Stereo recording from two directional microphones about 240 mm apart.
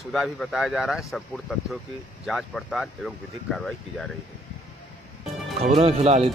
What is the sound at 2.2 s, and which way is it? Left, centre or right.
Speech, centre.